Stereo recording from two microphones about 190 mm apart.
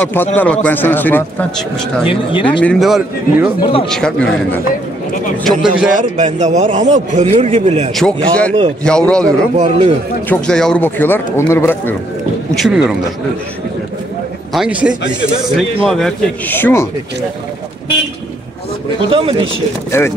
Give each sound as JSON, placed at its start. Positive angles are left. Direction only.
{"t": 0.0, "sound": "speech", "side_deg": 10}
{"t": 2.0, "sound": "speech", "side_deg": 25}
{"t": 2.6, "sound": "a man's voice", "side_deg": 0}
{"t": 3.6, "sound": "speech", "side_deg": 25}
{"t": 3.9, "sound": "a man's voice", "side_deg": 5}
{"t": 5.9, "sound": "a man's voice", "side_deg": -40}
{"t": 7.9, "sound": "a man's voice", "side_deg": 5}
{"t": 9.6, "sound": "a man's voice", "side_deg": -30}
{"t": 10.2, "sound": "speech", "side_deg": 5}
{"t": 12.5, "sound": "a man's voice", "side_deg": -5}
{"t": 14.5, "sound": "a man's voice", "side_deg": -5}
{"t": 19.0, "sound": "speech", "side_deg": -25}
{"t": 19.9, "sound": "speech", "side_deg": 15}